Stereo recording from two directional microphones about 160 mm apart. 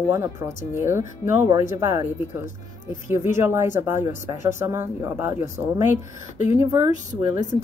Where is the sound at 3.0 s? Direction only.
15° right (ahead or behind).